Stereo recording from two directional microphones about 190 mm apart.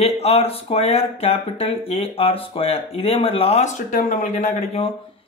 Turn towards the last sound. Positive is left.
turn(degrees=35)  # may be behind; listen again after turning